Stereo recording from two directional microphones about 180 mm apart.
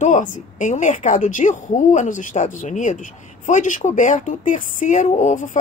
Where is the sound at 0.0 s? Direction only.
45° left (ahead or behind).